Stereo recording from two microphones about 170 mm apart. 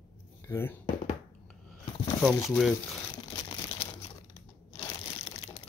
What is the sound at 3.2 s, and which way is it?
Crumpling, 25° left (ahead or behind).